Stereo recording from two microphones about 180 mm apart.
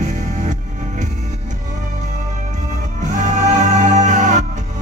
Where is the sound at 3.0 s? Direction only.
45° right (ahead or behind).